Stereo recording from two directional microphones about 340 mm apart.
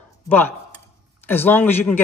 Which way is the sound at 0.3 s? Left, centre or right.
Centre.